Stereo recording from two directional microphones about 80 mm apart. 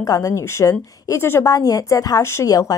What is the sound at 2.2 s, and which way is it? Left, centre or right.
Speech, left.